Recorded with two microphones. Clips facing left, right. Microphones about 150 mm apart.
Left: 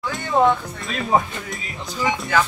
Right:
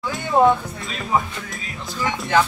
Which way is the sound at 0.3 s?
10° right (ahead or behind).